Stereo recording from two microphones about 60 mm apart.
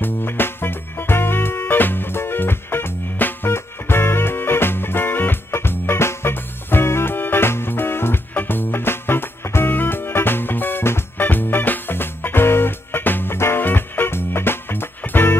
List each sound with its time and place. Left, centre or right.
0.0 s music: left